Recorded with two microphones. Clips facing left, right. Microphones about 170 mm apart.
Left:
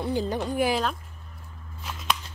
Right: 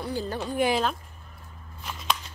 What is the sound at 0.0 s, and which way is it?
Speech, 20° left (ahead or behind).